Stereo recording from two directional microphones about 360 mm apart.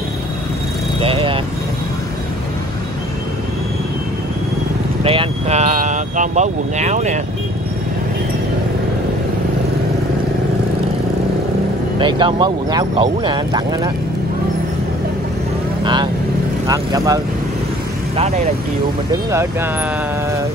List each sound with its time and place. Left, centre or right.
1.0 s speech: centre
5.0 s speech: centre
12.0 s speech: centre
15.8 s vehicle: centre
16.6 s speech: centre